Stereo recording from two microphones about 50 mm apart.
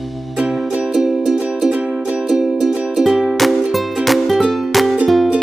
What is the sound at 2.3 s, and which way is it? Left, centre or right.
Music, centre.